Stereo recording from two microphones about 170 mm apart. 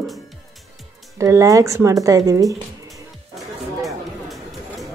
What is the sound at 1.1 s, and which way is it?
A woman's voice, 20° right (ahead or behind).